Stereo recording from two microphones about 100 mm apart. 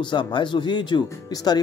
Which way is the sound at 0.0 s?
55° left (ahead or behind).